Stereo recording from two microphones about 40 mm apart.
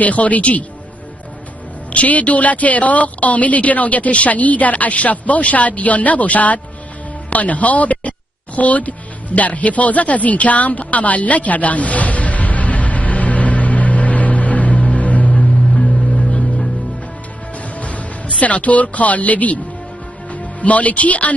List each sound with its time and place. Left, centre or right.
0.0 s a woman's voice: left
1.9 s a woman's voice: left
8.5 s music: left
15.5 s music: centre
16.2 s music: centre
17.7 s music: left
18.4 s a woman's voice: left
20.6 s a woman's voice: left